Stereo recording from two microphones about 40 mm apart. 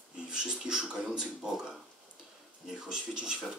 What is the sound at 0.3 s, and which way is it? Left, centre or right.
Speech, centre.